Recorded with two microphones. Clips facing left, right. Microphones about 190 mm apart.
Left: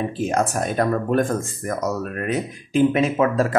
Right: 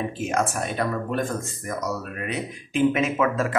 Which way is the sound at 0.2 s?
35° left (ahead or behind).